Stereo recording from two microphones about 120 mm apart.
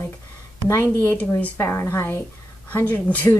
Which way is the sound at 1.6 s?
20° left (ahead or behind).